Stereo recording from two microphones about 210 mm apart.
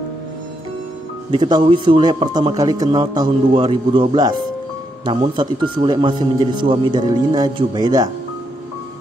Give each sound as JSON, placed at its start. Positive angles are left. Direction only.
{"t": 1.3, "sound": "speech", "side_deg": -20}